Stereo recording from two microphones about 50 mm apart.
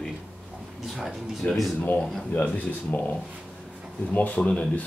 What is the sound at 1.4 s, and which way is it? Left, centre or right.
Speech, left.